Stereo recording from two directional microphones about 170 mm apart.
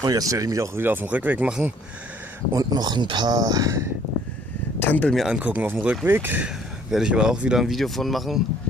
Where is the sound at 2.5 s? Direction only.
20° right (ahead or behind).